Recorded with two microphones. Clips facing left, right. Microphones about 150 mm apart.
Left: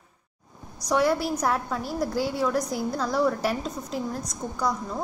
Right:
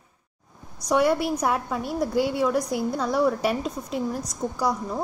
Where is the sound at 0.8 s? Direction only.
Centre (ahead or behind).